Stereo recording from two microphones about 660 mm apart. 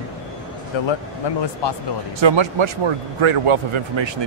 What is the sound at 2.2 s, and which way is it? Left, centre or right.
Speech, right.